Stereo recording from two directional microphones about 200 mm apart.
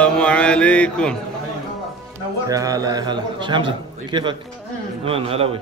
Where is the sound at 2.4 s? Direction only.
15° right (ahead or behind).